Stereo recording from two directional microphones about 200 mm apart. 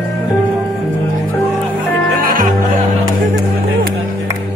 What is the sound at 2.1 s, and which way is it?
Music, 45° right (ahead or behind).